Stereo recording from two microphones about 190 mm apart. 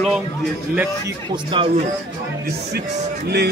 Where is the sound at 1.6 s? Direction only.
25° right (ahead or behind).